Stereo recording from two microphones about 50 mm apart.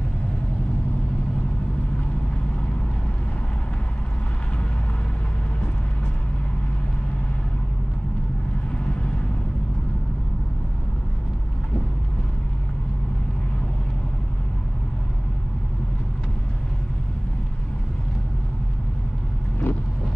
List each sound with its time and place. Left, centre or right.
8.7 s vehicle: left
19.7 s vehicle: left